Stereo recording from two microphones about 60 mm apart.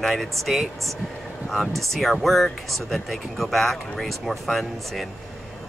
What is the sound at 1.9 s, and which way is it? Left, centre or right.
Speech, centre.